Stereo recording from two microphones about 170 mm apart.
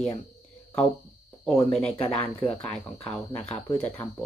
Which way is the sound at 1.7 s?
35° left (ahead or behind).